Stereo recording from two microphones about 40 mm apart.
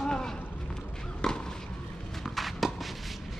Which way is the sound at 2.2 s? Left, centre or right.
Centre.